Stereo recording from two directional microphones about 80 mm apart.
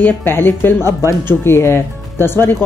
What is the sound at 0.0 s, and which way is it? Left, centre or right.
Speech, left.